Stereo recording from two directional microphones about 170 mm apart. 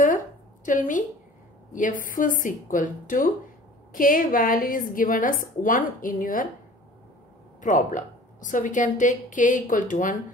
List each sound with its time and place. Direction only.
0.7 s a woman's voice: 50° left (ahead or behind)
7.6 s a woman's voice: 50° left (ahead or behind)